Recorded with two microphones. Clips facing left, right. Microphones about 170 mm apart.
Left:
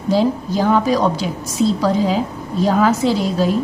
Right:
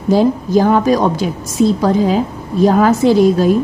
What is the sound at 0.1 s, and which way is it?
A woman's voice, 50° right (ahead or behind).